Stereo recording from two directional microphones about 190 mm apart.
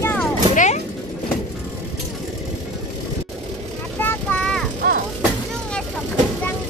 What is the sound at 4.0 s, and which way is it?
Vehicle, 10° left (ahead or behind).